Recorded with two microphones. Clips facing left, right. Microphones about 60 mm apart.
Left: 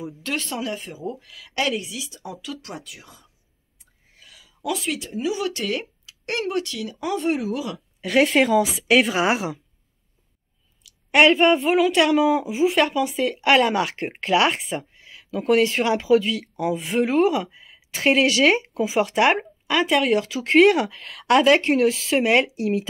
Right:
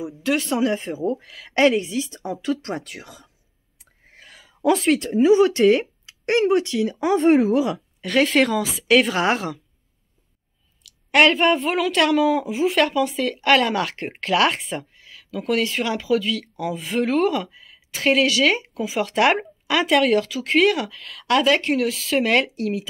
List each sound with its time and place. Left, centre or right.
0.0 s speech: centre
0.5 s speech: right
2.8 s speech: right
4.1 s whispering: right
4.8 s speech: right
5.2 s speech: right
8.0 s a woman's voice: centre
10.9 s a woman's voice: centre
15.0 s speech: left
19.1 s speech: centre
20.2 s speech: left
22.2 s a woman's voice: centre